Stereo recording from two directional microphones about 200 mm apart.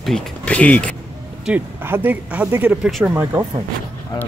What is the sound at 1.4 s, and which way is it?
Speech, 10° right (ahead or behind).